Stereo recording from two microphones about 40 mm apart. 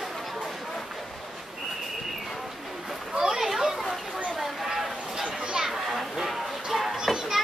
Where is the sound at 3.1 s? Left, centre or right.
Centre.